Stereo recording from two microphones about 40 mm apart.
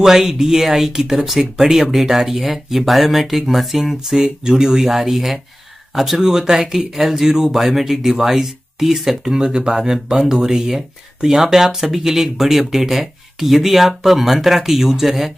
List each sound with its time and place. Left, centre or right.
0.0 s speech: centre
4.5 s speech: centre
4.8 s speech: centre
6.2 s speech: centre